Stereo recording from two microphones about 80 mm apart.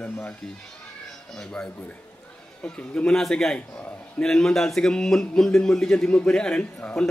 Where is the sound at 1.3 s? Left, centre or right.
Centre.